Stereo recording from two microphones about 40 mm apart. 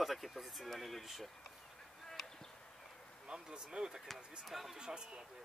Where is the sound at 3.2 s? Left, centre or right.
Right.